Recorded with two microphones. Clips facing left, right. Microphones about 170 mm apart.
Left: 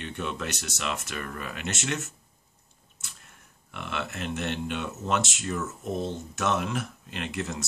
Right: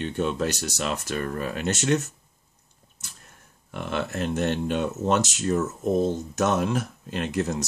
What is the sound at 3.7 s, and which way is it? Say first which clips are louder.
Speech: right 6 dB; 40° right (ahead or behind).